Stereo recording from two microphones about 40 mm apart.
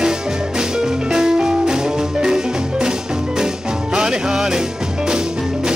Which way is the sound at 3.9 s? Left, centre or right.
Centre.